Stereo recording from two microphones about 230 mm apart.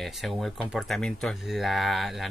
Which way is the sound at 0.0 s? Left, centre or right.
Centre.